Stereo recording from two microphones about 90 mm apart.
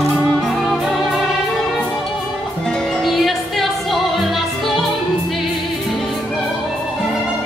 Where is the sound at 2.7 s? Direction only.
5° left (ahead or behind).